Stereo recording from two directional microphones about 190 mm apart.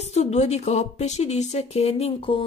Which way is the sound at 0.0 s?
35° left (ahead or behind).